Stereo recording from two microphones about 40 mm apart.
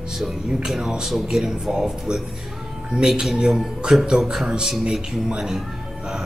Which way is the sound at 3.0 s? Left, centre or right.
Centre.